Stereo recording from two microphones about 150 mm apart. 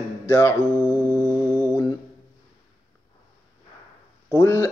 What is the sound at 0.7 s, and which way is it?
Music, 15° right (ahead or behind).